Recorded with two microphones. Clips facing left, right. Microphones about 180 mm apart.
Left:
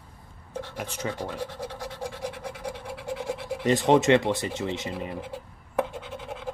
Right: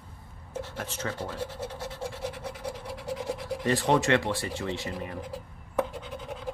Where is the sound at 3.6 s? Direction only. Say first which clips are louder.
Left 4 dB; 20° left (ahead or behind).